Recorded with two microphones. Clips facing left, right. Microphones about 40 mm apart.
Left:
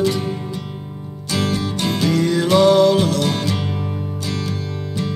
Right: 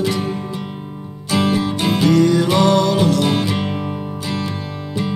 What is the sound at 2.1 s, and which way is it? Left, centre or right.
Music, centre.